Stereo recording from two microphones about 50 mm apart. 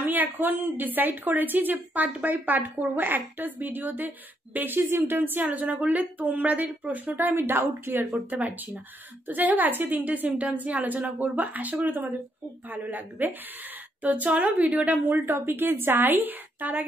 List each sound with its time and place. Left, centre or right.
0.0 s a woman's voice: right
7.3 s a woman's voice: right
8.3 s a woman's voice: right
15.2 s a woman's voice: right